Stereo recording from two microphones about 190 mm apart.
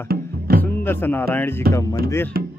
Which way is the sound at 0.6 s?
10° left (ahead or behind).